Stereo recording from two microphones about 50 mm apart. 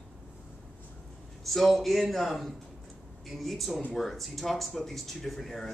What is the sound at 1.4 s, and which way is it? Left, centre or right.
Speech, centre.